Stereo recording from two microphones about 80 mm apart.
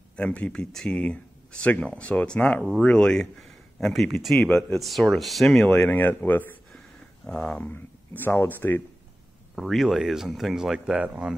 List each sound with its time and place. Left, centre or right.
0.1 s speech: centre
5.9 s speech: left
7.2 s speech: centre
7.7 s speech: left
9.6 s speech: centre